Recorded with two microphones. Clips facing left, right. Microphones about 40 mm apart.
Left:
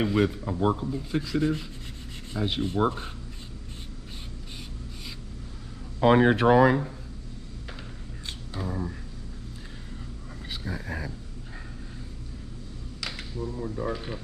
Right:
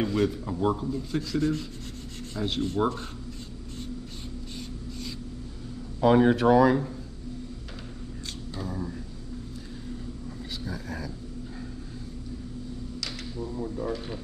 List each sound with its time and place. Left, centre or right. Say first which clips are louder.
0.0 s rub: left 1 dB; centre
5.9 s speech: left 1 dB; left
8.5 s speech: left 2 dB; centre
10.6 s speech: left 2 dB; left
13.4 s speech: even; centre
13.7 s rub: even; centre